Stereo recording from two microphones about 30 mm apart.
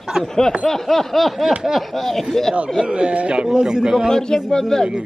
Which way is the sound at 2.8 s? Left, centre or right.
Right.